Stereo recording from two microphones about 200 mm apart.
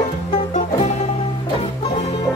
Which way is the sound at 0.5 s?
35° left (ahead or behind).